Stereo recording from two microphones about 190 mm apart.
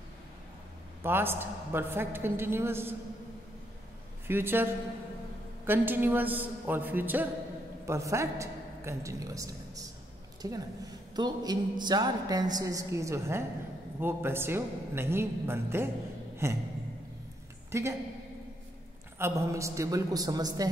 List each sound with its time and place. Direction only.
1.0 s a woman's voice: 10° right (ahead or behind)
4.3 s a woman's voice: 10° right (ahead or behind)
17.6 s a woman's voice: 15° right (ahead or behind)
19.1 s a woman's voice: 15° right (ahead or behind)